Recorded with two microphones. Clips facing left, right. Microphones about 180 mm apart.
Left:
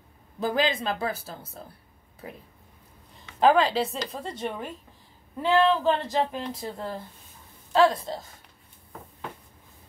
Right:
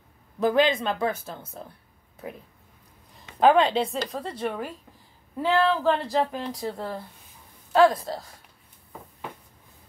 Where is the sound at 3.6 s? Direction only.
5° left (ahead or behind).